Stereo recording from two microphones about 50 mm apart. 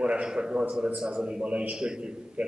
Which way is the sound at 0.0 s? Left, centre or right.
Right.